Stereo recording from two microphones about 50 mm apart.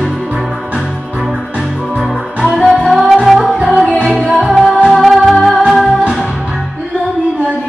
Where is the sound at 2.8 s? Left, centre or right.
Centre.